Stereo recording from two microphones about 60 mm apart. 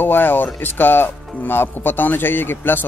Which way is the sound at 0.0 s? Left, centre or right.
Left.